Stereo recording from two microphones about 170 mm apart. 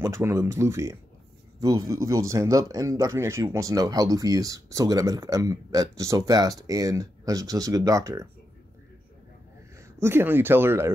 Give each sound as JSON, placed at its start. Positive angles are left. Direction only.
{"t": 0.0, "sound": "speech", "side_deg": -15}
{"t": 9.9, "sound": "speech", "side_deg": -15}